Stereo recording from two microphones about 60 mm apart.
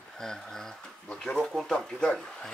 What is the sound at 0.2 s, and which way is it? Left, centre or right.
Speech, centre.